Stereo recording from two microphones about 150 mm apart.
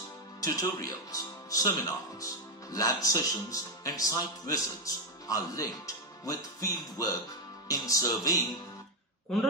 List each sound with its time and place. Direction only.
0.4 s a man's voice: 20° left (ahead or behind)